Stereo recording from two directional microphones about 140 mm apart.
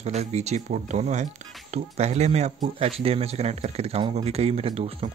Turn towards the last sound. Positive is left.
turn(degrees=-45)  # may be behind; listen again after turning